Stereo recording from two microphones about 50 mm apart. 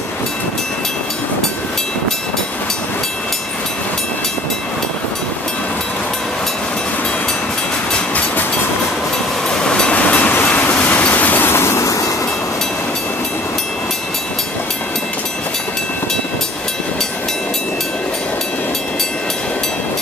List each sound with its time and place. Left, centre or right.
9.6 s train: centre
10.4 s train: left
11.6 s train: left